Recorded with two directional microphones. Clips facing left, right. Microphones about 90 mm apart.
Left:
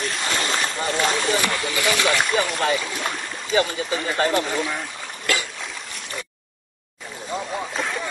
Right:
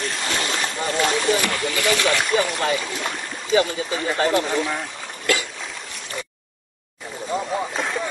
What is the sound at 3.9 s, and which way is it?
Speech, 15° right (ahead or behind).